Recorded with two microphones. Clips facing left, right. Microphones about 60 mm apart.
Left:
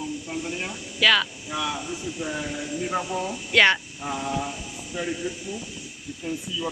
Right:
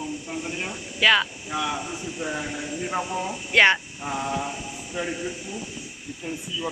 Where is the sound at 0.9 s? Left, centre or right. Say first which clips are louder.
Right 1 dB; right.